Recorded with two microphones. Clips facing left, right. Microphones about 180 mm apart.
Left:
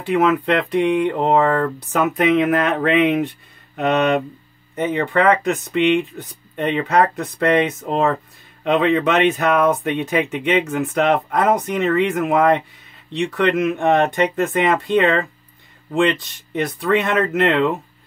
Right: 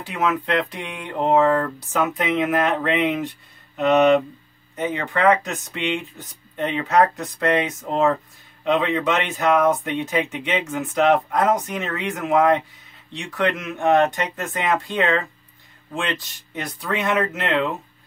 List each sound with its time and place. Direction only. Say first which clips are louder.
0.0 s speech: left 7 dB; 60° left (ahead or behind)
4.7 s speech: left 5 dB; 60° left (ahead or behind)